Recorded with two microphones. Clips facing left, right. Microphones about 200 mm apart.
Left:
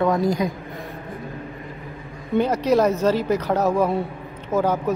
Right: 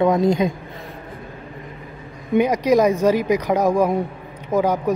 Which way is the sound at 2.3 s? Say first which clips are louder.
Right 2 dB; 15° right (ahead or behind).